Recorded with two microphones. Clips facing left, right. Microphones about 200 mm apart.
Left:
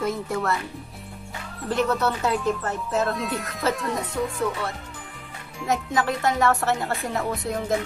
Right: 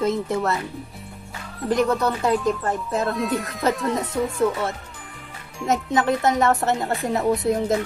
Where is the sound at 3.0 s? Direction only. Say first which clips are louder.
Right 3 dB; centre (ahead or behind).